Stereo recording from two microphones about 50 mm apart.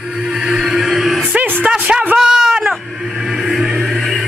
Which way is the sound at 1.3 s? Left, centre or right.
Right.